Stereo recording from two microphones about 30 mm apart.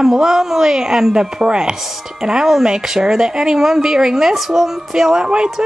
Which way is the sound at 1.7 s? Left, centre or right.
Centre.